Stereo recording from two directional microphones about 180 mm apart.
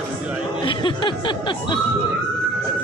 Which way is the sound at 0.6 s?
30° left (ahead or behind).